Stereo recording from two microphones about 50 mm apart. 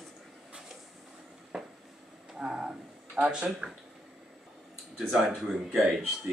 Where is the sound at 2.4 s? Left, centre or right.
Centre.